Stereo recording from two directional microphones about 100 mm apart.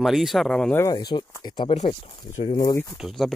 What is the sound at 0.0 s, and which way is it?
Speech, centre (ahead or behind).